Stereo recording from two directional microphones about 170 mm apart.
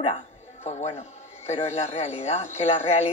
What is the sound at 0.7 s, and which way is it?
Speech, 40° left (ahead or behind).